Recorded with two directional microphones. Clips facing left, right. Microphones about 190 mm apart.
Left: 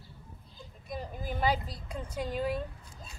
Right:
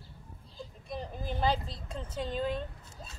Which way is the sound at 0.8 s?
5° left (ahead or behind).